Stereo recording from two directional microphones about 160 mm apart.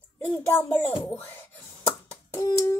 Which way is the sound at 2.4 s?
20° left (ahead or behind).